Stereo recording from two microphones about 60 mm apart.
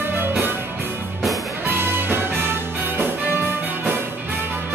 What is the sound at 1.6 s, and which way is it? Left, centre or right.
Music, right.